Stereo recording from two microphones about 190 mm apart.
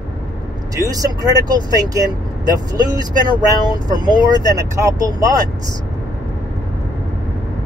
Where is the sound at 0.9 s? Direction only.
20° right (ahead or behind).